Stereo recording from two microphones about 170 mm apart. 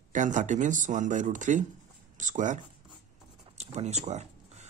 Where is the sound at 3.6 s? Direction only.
40° right (ahead or behind).